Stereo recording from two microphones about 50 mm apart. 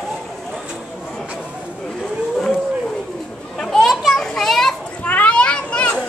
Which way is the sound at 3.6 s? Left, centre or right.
Centre.